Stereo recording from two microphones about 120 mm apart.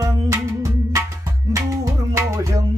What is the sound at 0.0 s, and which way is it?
Music, 25° right (ahead or behind).